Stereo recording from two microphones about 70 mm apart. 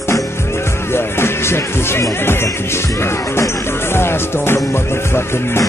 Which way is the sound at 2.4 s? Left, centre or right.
Left.